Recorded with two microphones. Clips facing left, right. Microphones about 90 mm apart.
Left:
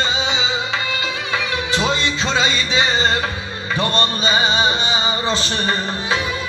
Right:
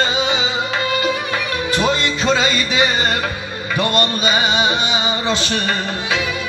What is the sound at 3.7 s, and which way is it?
Male singing, 30° left (ahead or behind).